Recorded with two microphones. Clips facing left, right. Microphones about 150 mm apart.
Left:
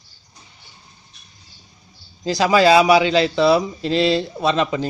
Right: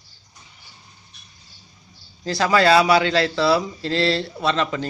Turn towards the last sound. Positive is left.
turn(degrees=15)  # may be behind; listen again after turning